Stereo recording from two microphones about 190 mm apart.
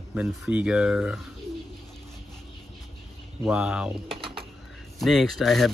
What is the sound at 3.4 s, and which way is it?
Speech, 5° right (ahead or behind).